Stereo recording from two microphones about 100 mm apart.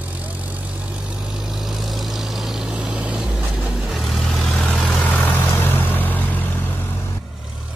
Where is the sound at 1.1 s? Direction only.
5° right (ahead or behind).